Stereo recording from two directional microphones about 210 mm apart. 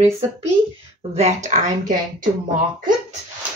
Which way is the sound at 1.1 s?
35° right (ahead or behind).